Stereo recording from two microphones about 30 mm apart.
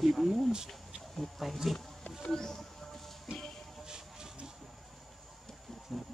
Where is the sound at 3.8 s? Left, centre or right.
Right.